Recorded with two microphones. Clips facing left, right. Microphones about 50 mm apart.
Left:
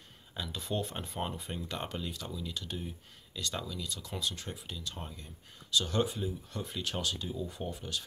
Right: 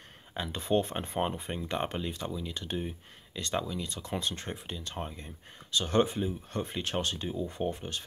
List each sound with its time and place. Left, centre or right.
0.3 s speech: right